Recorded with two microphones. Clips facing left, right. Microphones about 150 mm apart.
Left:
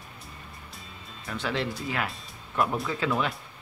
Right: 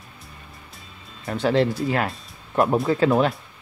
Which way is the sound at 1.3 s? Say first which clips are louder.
Right 10 dB; 40° right (ahead or behind).